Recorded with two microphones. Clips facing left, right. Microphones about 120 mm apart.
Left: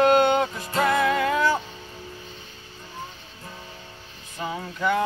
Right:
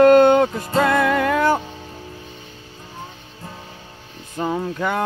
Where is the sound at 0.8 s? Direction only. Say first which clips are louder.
Right 3 dB; 55° right (ahead or behind).